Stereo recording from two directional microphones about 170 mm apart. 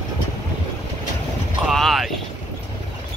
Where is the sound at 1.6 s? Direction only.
Centre (ahead or behind).